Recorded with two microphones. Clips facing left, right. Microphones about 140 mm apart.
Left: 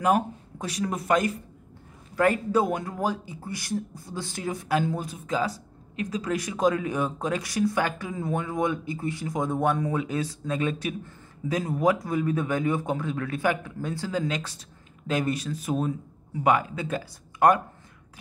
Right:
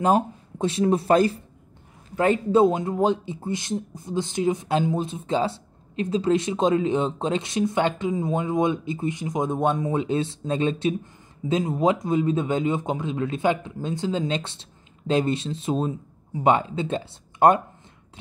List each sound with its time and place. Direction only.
0.0 s speech: 25° right (ahead or behind)